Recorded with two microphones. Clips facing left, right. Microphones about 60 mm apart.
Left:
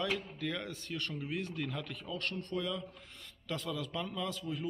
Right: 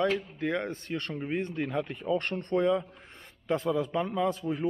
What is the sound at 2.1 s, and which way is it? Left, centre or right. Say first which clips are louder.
Speech: right 9 dB; right.